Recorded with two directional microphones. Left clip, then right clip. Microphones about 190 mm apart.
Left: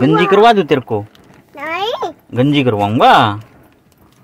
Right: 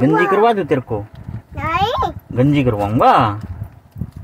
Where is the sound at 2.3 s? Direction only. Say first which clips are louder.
Left 4 dB; 25° left (ahead or behind).